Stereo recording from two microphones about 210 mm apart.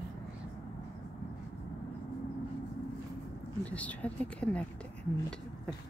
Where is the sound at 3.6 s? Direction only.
5° left (ahead or behind).